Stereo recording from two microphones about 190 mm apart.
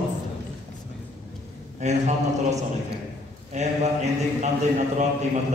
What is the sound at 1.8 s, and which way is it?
A man's voice, 35° right (ahead or behind).